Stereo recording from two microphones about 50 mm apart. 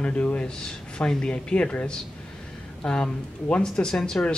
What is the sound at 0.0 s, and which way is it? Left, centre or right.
Speech, left.